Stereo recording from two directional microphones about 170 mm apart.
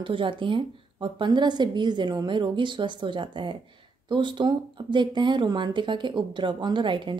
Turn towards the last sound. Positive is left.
turn(degrees=-30)  # may be behind; listen again after turning